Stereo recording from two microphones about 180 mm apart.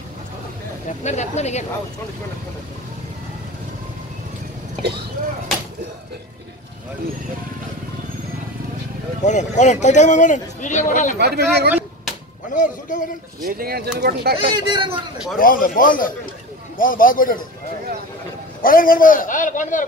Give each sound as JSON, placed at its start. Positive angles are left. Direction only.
{"t": 0.8, "sound": "speech", "side_deg": 40}
{"t": 9.2, "sound": "speech", "side_deg": 40}
{"t": 11.1, "sound": "speech", "side_deg": -65}
{"t": 12.5, "sound": "a man's voice", "side_deg": 45}
{"t": 13.4, "sound": "speech", "side_deg": -55}
{"t": 14.5, "sound": "speech", "side_deg": -25}
{"t": 15.3, "sound": "a man's voice", "side_deg": 50}
{"t": 18.6, "sound": "a man's voice", "side_deg": 50}